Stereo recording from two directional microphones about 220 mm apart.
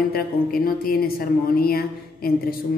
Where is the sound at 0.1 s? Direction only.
40° left (ahead or behind).